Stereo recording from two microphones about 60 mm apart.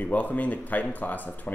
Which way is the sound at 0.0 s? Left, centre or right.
Left.